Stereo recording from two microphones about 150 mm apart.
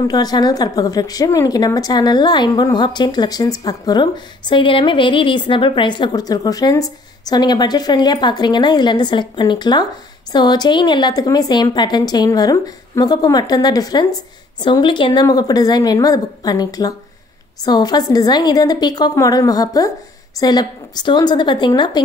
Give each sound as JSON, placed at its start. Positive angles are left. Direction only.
{"t": 0.0, "sound": "a woman's voice", "side_deg": 25}